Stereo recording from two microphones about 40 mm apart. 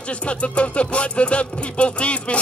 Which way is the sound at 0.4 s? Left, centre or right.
Left.